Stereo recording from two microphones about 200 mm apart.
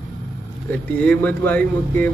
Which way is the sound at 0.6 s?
5° left (ahead or behind).